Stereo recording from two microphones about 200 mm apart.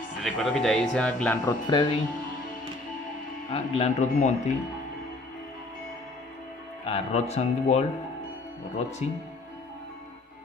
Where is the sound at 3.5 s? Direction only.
30° left (ahead or behind).